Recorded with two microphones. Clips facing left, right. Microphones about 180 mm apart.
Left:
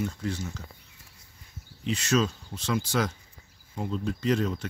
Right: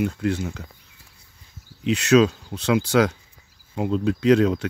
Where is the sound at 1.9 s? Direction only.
70° right (ahead or behind).